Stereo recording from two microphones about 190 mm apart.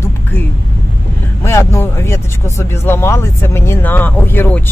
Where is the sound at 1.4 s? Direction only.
15° left (ahead or behind).